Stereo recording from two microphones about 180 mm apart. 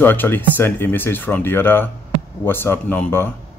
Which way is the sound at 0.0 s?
10° left (ahead or behind).